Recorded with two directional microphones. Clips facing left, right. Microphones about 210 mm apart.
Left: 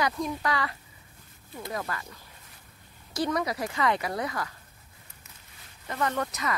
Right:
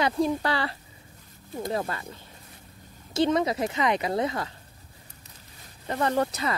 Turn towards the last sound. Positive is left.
turn(degrees=-30)  # may be behind; listen again after turning